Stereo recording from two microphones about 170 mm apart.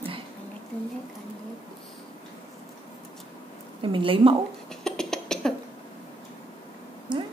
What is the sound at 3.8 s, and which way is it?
Speech, 30° right (ahead or behind).